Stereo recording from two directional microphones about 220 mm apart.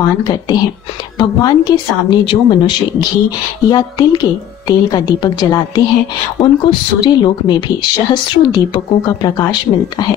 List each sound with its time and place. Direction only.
0.2 s a woman's voice: 20° left (ahead or behind)